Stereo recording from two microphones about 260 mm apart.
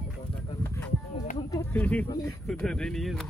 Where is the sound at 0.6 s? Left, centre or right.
Centre.